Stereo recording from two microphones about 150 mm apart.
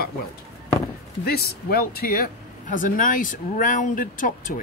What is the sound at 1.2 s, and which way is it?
Speech, 90° left.